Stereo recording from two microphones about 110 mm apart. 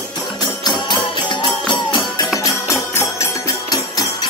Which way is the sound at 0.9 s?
45° left (ahead or behind).